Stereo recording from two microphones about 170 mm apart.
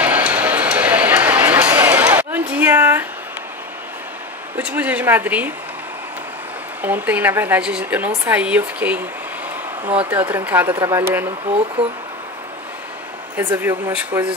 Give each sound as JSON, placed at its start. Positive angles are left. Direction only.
{"t": 0.0, "sound": "a sound", "side_deg": -10}
{"t": 4.6, "sound": "a woman's voice", "side_deg": -10}
{"t": 6.8, "sound": "a woman's voice", "side_deg": -10}
{"t": 13.6, "sound": "a woman's voice", "side_deg": -15}